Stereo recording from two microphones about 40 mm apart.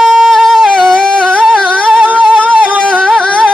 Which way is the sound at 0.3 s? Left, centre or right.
Centre.